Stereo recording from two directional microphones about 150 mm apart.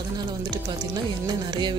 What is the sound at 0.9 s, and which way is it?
Music, 30° right (ahead or behind).